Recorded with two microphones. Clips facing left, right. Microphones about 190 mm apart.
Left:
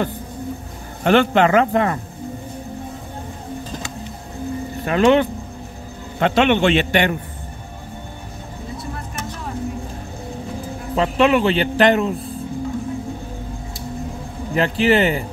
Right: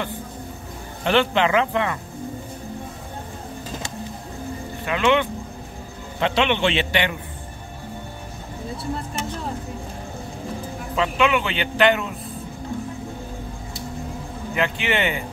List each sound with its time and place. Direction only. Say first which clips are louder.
1.0 s a man's voice: left 5 dB; 45° left (ahead or behind)
4.8 s a man's voice: left 5 dB; 40° left (ahead or behind)
11.0 s speech: left 5 dB; 40° left (ahead or behind)
14.5 s speech: left 7 dB; 35° left (ahead or behind)